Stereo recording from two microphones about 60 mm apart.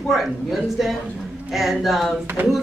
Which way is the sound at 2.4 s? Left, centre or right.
Right.